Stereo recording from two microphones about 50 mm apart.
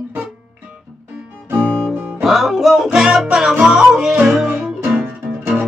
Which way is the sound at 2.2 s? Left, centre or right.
Centre.